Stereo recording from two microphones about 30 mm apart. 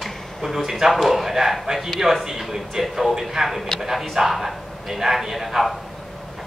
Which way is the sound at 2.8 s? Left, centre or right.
Centre.